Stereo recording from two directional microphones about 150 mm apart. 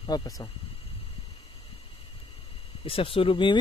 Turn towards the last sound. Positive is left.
turn(degrees=35)  # may be behind; listen again after turning